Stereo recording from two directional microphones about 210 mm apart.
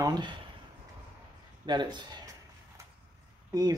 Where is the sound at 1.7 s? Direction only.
20° right (ahead or behind).